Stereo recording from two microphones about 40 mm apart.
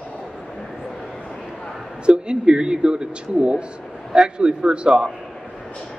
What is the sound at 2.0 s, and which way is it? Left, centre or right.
A man's voice, right.